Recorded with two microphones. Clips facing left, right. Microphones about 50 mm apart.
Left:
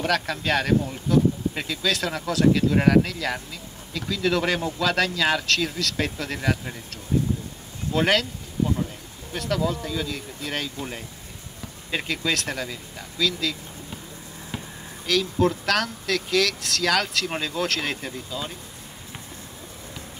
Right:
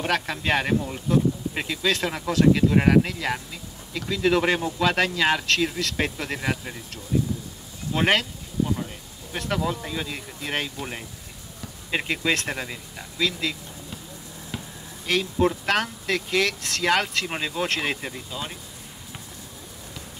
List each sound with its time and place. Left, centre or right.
0.0 s speech: right
7.9 s speech: right
9.3 s speech: right
15.0 s speech: right